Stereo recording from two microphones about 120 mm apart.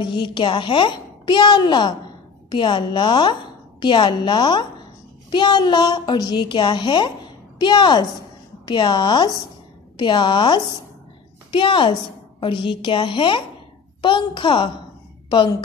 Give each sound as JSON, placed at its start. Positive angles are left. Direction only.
{"t": 0.0, "sound": "a woman's voice", "side_deg": 40}